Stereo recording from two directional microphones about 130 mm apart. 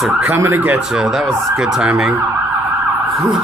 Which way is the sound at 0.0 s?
10° right (ahead or behind).